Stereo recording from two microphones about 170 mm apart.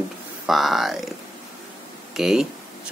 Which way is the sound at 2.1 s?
Centre (ahead or behind).